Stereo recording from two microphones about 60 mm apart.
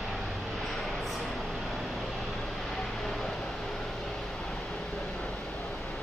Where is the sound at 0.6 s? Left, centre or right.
Centre.